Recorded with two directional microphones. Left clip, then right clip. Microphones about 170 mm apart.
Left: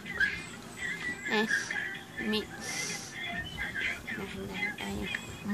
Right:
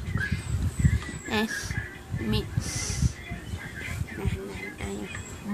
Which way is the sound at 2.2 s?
5° right (ahead or behind).